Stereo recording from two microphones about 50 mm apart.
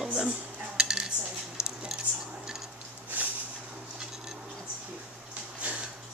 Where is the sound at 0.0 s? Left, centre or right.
Centre.